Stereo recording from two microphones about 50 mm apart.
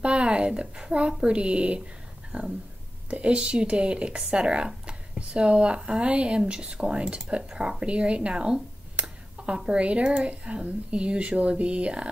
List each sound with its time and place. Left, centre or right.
0.0 s speech: right
2.3 s a sound: right
3.1 s speech: right